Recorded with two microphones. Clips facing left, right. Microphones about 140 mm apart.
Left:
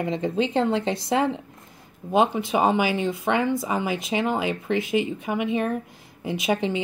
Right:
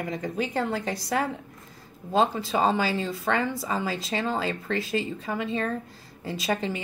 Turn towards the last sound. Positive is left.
turn(degrees=20)  # may be behind; listen again after turning